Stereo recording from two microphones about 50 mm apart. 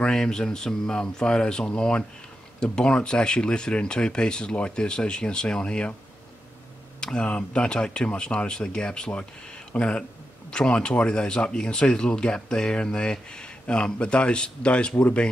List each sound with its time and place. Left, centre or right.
0.0 s speech: centre
7.0 s speech: centre